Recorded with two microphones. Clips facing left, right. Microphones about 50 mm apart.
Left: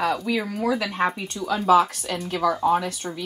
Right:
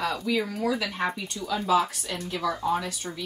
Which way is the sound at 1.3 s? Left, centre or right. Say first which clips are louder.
Left 6 dB; left.